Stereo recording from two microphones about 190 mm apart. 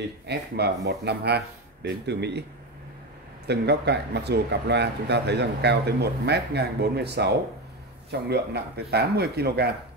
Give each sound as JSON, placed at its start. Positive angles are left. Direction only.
{"t": 0.3, "sound": "speech", "side_deg": -60}
{"t": 3.4, "sound": "speech", "side_deg": -60}